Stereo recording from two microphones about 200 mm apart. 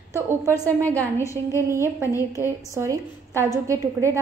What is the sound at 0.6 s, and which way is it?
A woman's voice, 10° left (ahead or behind).